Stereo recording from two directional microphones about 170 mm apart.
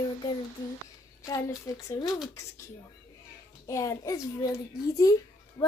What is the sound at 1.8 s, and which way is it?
Speech, 20° left (ahead or behind).